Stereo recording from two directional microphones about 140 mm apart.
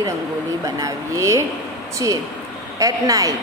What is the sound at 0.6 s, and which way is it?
A woman's voice, 25° right (ahead or behind).